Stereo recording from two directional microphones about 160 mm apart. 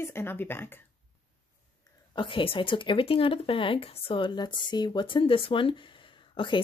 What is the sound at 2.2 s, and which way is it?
Speech, 35° left (ahead or behind).